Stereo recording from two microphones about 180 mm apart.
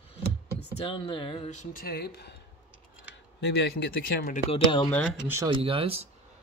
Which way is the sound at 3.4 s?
65° left (ahead or behind).